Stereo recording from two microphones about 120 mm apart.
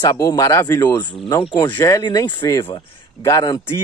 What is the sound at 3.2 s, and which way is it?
Speech, 30° left (ahead or behind).